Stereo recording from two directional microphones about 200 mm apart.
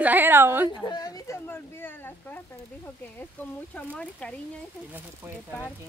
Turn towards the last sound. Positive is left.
turn(degrees=5)  # may be behind; listen again after turning